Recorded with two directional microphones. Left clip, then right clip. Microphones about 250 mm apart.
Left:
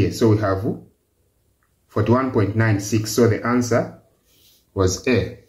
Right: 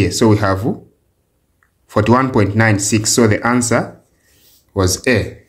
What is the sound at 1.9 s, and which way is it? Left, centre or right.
Speech, right.